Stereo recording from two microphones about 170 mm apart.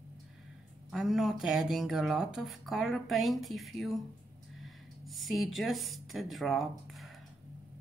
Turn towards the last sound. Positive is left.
turn(degrees=0)  # may be behind; listen again after turning